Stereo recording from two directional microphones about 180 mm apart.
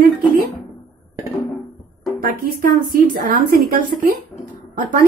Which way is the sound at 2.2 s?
50° right (ahead or behind).